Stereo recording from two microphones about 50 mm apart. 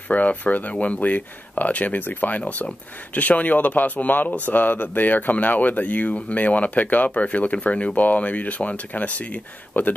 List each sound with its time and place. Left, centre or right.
0.1 s speech: left